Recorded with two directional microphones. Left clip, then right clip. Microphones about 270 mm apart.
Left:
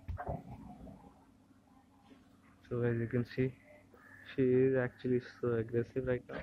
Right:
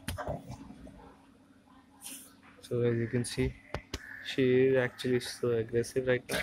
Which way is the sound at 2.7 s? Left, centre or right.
Centre.